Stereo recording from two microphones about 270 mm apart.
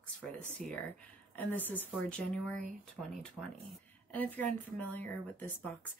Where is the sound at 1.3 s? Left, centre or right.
Centre.